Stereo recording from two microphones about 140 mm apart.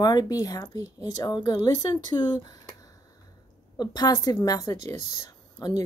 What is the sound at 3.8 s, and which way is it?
Speech, 30° left (ahead or behind).